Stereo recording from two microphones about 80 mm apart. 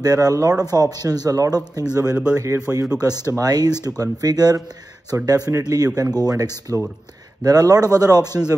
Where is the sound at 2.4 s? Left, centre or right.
Right.